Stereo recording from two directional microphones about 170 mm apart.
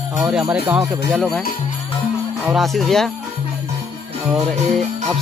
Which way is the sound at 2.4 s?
Centre (ahead or behind).